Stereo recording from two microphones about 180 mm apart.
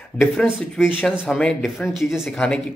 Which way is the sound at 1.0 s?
5° left (ahead or behind).